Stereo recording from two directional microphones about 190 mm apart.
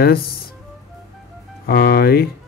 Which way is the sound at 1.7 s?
55° left (ahead or behind).